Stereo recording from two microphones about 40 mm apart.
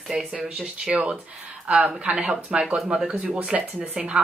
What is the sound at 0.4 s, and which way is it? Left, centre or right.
A woman's voice, right.